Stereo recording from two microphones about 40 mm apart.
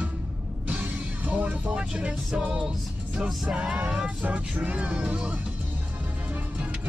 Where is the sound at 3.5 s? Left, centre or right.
Centre.